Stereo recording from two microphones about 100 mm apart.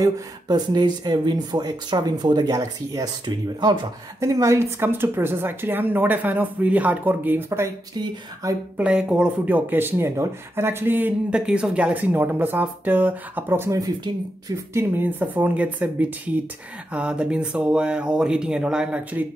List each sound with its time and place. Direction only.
0.0 s speech: 45° right (ahead or behind)
4.2 s speech: 35° right (ahead or behind)
7.9 s a sound: 40° right (ahead or behind)
8.7 s speech: 10° right (ahead or behind)
13.7 s a sound: 35° right (ahead or behind)
14.7 s speech: 20° right (ahead or behind)